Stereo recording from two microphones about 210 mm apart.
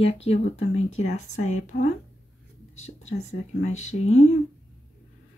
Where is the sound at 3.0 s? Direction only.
30° left (ahead or behind).